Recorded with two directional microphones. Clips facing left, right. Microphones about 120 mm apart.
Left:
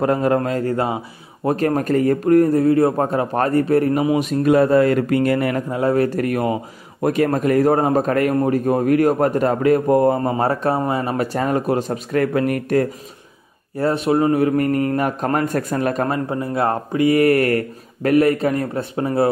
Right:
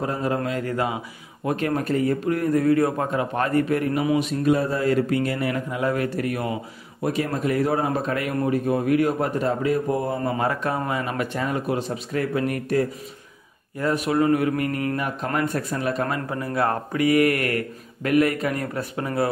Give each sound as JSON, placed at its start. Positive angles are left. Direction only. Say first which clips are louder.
{"t": 0.0, "sound": "a man's voice", "louder": "left 7 dB", "side_deg": 60}
{"t": 0.5, "sound": "speech", "louder": "left 5 dB", "side_deg": 35}
{"t": 4.5, "sound": "a man's voice", "louder": "left 8 dB", "side_deg": 65}
{"t": 5.7, "sound": "a man's voice", "louder": "left 6 dB", "side_deg": 35}
{"t": 10.3, "sound": "speech", "louder": "left 5 dB", "side_deg": 35}
{"t": 13.7, "sound": "speech", "louder": "left 4 dB", "side_deg": 30}
{"t": 16.1, "sound": "speech", "louder": "left 5 dB", "side_deg": 25}